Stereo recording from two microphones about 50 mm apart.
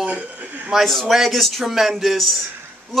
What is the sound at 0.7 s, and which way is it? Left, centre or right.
A woman's voice, centre.